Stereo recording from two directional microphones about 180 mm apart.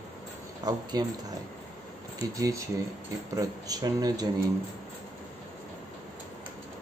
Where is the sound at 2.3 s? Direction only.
20° right (ahead or behind).